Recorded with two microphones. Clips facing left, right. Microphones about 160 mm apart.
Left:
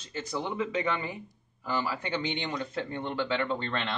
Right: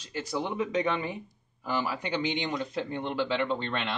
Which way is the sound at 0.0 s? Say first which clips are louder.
Right 2 dB; 10° right (ahead or behind).